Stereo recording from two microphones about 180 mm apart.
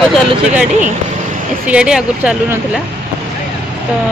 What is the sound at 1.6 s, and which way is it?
Speech, 5° right (ahead or behind).